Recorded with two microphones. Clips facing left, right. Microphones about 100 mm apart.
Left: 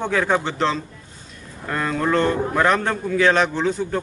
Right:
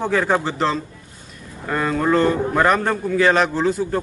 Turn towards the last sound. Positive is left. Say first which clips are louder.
# right 2 dB
turn(degrees=-5)  # may be behind; listen again after turning